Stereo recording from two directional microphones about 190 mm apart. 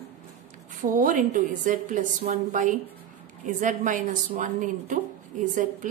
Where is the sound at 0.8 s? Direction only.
45° right (ahead or behind).